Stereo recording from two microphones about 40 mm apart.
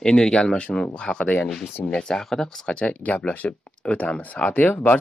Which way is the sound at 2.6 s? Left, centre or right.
Left.